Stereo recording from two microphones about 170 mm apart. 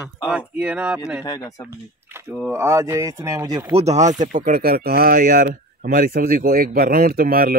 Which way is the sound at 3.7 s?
40° right (ahead or behind).